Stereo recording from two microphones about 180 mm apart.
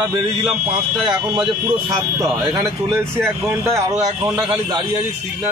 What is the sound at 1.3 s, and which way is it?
A man's voice, 25° right (ahead or behind).